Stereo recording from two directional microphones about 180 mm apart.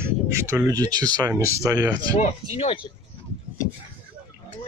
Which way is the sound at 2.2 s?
35° left (ahead or behind).